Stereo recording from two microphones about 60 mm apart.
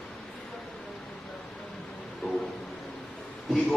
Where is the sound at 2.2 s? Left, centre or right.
Centre.